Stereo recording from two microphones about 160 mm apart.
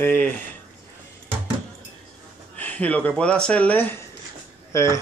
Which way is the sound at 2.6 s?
10° left (ahead or behind).